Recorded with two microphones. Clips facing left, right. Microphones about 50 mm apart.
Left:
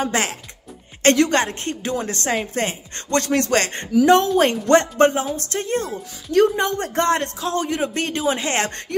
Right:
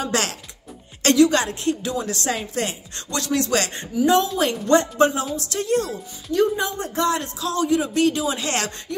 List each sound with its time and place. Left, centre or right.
0.1 s speech: left
1.0 s a man's voice: left
3.1 s music: left
5.3 s a man's voice: left
6.3 s a man's voice: left